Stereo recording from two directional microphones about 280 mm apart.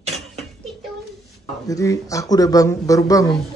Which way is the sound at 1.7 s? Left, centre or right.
Centre.